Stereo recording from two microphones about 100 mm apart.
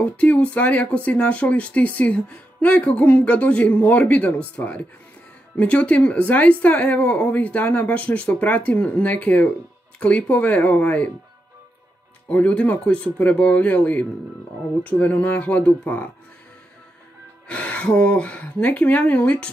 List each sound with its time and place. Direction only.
0.0 s speech: 15° left (ahead or behind)
12.3 s speech: 15° left (ahead or behind)
17.5 s speech: 10° left (ahead or behind)